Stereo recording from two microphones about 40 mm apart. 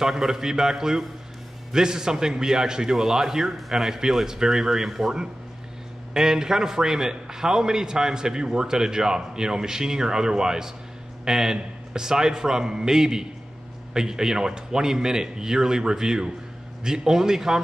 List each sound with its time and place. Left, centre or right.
0.0 s a man's voice: centre